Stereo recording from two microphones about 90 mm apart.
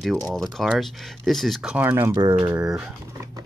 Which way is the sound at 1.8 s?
25° right (ahead or behind).